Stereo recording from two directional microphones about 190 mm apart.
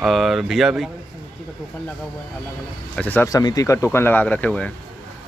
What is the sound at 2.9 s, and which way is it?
Speech, 10° left (ahead or behind).